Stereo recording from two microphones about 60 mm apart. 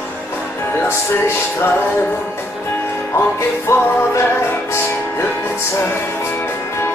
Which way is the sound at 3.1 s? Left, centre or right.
Left.